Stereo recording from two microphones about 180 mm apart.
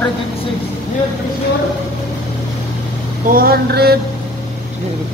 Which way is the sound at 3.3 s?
55° right (ahead or behind).